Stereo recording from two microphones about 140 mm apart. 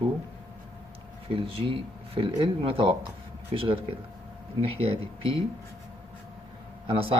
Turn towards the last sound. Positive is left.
turn(degrees=-40)  # may be behind; listen again after turning